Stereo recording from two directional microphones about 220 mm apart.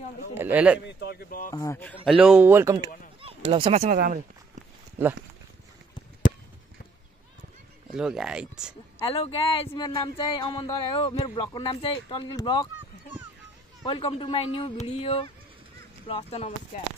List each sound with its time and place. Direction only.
0.3 s speech: 10° right (ahead or behind)
0.8 s a sound: 45° left (ahead or behind)
1.5 s speech: 15° left (ahead or behind)
2.0 s speech: 5° right (ahead or behind)
3.2 s speech: 25° right (ahead or behind)
5.0 s speech: 10° right (ahead or behind)
7.9 s speech: 5° right (ahead or behind)
9.1 s speech: 25° left (ahead or behind)
13.8 s speech: 20° left (ahead or behind)